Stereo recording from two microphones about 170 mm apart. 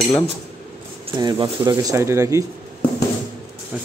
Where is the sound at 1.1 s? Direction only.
25° right (ahead or behind).